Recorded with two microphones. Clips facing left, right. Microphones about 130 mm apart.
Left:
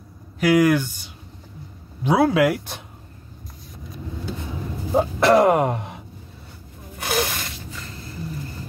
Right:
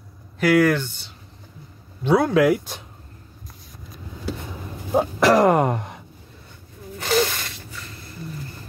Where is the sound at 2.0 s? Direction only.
10° left (ahead or behind).